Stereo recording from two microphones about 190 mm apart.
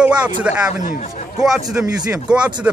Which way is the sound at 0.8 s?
40° left (ahead or behind).